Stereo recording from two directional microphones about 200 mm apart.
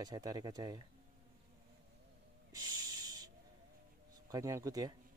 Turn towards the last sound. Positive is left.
turn(degrees=-20)  # may be behind; listen again after turning